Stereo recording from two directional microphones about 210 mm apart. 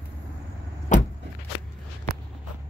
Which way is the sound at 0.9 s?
35° left (ahead or behind).